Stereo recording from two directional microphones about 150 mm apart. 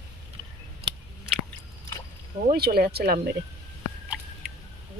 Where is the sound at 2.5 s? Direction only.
90° right.